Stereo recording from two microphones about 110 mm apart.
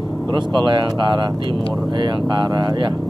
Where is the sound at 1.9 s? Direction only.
45° right (ahead or behind).